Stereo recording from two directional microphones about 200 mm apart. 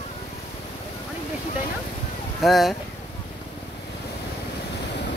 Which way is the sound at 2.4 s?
Centre (ahead or behind).